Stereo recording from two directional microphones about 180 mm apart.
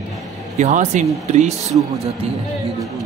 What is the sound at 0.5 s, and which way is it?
Speech, 40° right (ahead or behind).